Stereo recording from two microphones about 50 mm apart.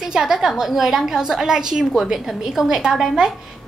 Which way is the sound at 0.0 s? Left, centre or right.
Centre.